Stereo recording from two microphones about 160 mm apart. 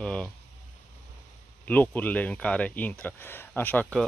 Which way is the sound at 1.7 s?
10° left (ahead or behind).